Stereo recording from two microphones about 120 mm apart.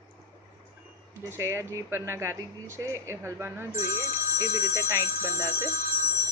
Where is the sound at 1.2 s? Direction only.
20° right (ahead or behind).